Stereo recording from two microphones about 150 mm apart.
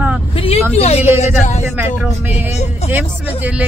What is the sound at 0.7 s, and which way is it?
Speech, 40° left (ahead or behind).